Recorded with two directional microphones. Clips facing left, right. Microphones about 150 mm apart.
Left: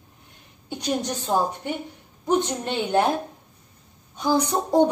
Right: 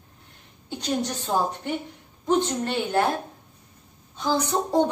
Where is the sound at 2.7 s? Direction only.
20° left (ahead or behind).